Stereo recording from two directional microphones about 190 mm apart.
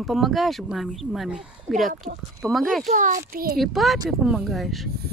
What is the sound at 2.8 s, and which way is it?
Speech, 40° right (ahead or behind).